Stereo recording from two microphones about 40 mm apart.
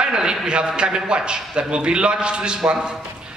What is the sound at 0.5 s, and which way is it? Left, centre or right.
A man's voice, right.